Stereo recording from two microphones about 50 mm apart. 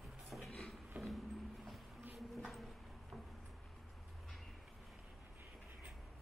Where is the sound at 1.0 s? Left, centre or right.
Right.